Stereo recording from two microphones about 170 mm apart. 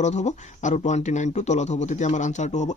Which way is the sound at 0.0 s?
45° left (ahead or behind).